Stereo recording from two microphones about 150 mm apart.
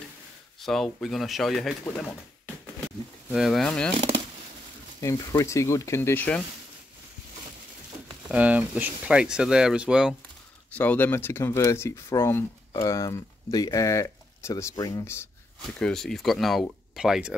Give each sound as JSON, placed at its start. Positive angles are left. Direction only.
{"t": 0.6, "sound": "speech", "side_deg": 0}
{"t": 3.3, "sound": "speech", "side_deg": 0}
{"t": 5.0, "sound": "speech", "side_deg": 20}
{"t": 8.3, "sound": "speech", "side_deg": -10}
{"t": 10.7, "sound": "speech", "side_deg": 10}
{"t": 15.8, "sound": "speech", "side_deg": 5}